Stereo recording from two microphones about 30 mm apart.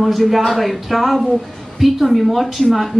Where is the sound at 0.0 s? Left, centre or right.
Centre.